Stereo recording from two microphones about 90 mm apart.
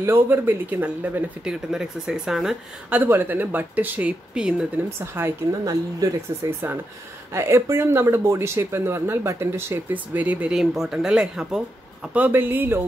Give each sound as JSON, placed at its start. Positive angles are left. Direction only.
{"t": 0.0, "sound": "speech", "side_deg": -25}
{"t": 1.4, "sound": "speech", "side_deg": -5}
{"t": 2.9, "sound": "speech", "side_deg": -20}
{"t": 4.8, "sound": "speech", "side_deg": -25}
{"t": 5.5, "sound": "speech", "side_deg": -45}
{"t": 7.3, "sound": "speech", "side_deg": -30}
{"t": 10.2, "sound": "speech", "side_deg": -15}
{"t": 10.5, "sound": "speech", "side_deg": -5}
{"t": 12.1, "sound": "speech", "side_deg": -20}